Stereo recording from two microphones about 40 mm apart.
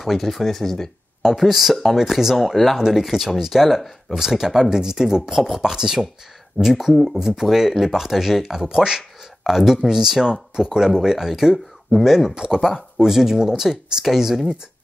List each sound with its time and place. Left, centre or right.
0.0 s speech: centre
2.5 s speech: centre
4.1 s speech: centre
8.5 s speech: centre
9.4 s speech: centre
12.4 s speech: centre